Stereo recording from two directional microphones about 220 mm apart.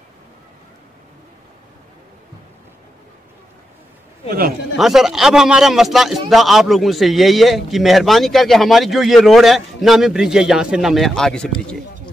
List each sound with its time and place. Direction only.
4.3 s a man's voice: 40° right (ahead or behind)
4.7 s a man's voice: centre (ahead or behind)